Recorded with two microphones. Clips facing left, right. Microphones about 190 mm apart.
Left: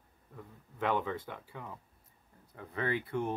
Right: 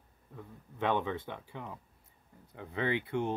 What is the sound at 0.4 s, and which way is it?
Speech, 20° right (ahead or behind).